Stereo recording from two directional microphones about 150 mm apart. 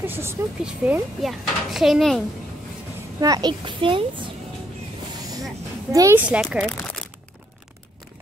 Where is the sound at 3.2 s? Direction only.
25° right (ahead or behind).